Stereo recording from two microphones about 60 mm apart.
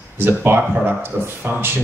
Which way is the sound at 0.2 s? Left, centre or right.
Right.